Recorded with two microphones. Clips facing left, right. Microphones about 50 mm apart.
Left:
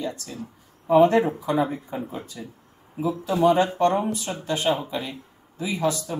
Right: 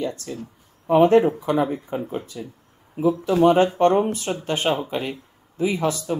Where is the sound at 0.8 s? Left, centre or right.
Right.